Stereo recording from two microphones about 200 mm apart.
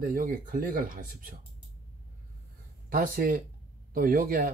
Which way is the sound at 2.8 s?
45° right (ahead or behind).